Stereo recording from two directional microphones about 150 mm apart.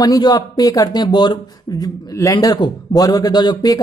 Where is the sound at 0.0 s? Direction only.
25° left (ahead or behind).